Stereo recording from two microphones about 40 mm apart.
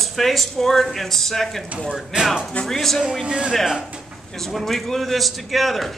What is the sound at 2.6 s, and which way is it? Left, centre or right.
Speech, centre.